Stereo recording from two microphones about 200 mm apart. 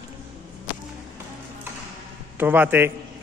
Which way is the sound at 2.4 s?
10° right (ahead or behind).